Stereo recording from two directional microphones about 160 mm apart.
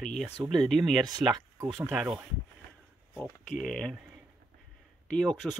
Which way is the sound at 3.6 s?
5° left (ahead or behind).